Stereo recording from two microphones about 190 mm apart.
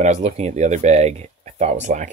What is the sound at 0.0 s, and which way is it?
Speech, 35° right (ahead or behind).